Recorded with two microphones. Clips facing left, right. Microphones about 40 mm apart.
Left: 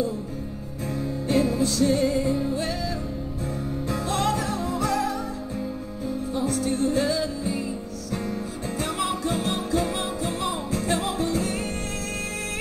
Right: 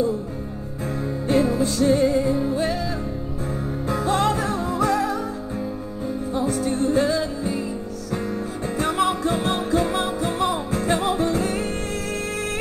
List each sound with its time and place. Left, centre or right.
1.3 s music: centre
3.9 s music: centre
6.3 s music: centre
8.7 s music: centre
9.4 s music: right